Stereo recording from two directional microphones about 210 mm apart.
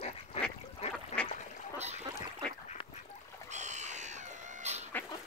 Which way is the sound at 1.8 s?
30° right (ahead or behind).